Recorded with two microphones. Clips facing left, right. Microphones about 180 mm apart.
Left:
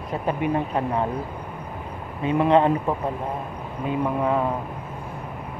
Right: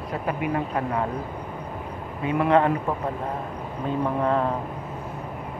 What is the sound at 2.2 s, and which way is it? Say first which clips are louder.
Speech: left 2 dB; 25° left (ahead or behind).